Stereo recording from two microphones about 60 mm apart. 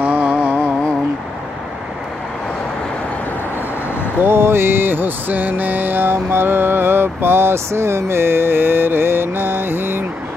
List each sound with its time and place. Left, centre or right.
0.0 s music: right
4.2 s mantra: right